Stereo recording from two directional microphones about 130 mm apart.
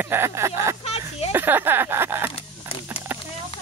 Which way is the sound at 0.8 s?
55° left (ahead or behind).